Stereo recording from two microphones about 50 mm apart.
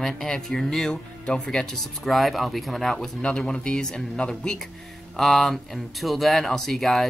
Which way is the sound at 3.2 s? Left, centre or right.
Centre.